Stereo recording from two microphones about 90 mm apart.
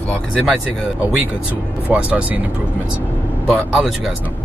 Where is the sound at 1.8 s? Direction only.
15° right (ahead or behind).